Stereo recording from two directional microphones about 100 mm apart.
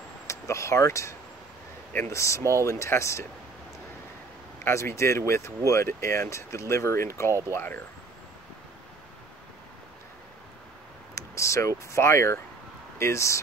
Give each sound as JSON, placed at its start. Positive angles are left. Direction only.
{"t": 0.3, "sound": "speech", "side_deg": 30}
{"t": 4.6, "sound": "speech", "side_deg": 25}
{"t": 7.2, "sound": "speech", "side_deg": -30}
{"t": 7.5, "sound": "speech", "side_deg": 20}
{"t": 11.1, "sound": "speech", "side_deg": 30}